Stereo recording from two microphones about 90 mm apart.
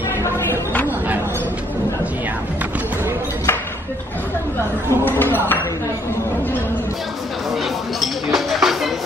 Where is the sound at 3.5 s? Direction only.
25° left (ahead or behind).